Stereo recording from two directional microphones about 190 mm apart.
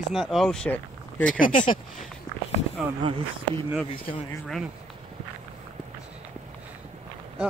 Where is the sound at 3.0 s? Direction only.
30° right (ahead or behind).